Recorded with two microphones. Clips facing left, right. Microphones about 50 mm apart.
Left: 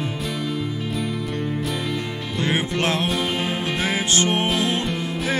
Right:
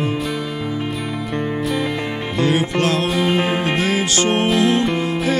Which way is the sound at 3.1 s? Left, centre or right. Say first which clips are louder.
Right 5 dB; centre.